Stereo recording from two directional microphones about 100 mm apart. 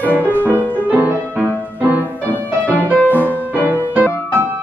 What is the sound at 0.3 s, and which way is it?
Music, 20° left (ahead or behind).